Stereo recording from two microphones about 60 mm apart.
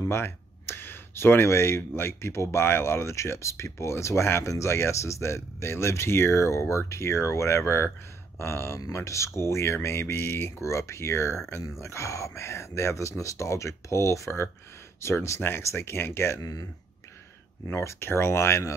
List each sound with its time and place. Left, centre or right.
0.1 s speech: left
16.3 s speech: left
17.7 s speech: left